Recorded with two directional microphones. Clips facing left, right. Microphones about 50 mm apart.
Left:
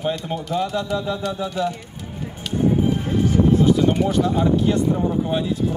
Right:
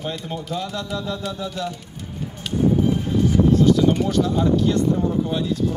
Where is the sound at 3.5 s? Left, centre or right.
Centre.